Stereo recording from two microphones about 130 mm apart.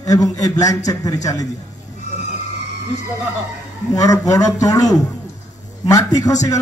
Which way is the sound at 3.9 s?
25° left (ahead or behind).